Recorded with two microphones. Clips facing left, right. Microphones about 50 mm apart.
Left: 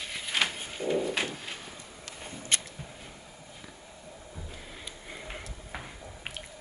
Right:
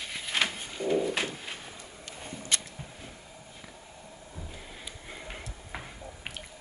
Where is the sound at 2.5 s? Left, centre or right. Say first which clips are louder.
Left 1 dB; left.